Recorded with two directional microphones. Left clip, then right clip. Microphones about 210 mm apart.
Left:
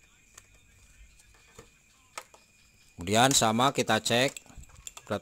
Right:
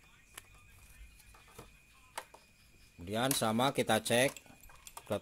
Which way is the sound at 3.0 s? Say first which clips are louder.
Left 11 dB; 40° left (ahead or behind).